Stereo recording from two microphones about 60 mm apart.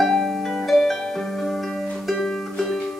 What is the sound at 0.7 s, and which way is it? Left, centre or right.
Harp, centre.